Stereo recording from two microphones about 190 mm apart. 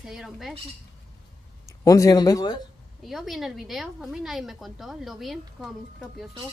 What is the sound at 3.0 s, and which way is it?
A woman's voice, centre (ahead or behind).